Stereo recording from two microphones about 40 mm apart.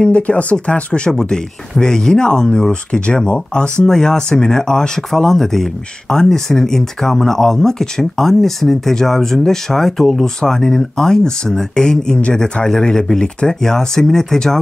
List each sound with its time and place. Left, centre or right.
0.0 s speech: left; by 14.6 s centre